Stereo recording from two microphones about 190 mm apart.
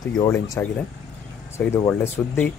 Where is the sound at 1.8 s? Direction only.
10° left (ahead or behind).